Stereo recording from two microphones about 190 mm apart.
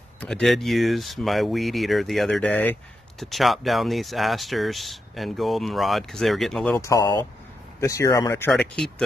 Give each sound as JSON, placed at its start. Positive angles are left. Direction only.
{"t": 0.2, "sound": "speech", "side_deg": 5}
{"t": 6.8, "sound": "speech", "side_deg": 15}